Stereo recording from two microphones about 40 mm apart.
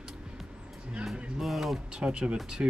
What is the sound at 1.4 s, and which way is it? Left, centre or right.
Speech, centre.